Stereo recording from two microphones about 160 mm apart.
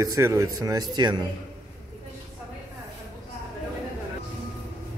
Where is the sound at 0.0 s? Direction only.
20° right (ahead or behind).